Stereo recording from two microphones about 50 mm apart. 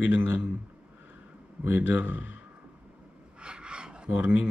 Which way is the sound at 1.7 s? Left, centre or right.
Right.